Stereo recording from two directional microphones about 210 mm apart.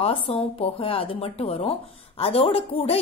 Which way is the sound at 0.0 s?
25° left (ahead or behind).